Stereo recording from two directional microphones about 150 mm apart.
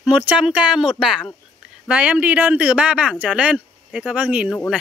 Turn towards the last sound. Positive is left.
turn(degrees=-10)  # may be behind; listen again after turning